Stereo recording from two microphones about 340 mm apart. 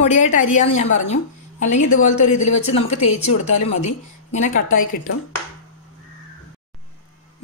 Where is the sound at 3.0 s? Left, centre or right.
Left.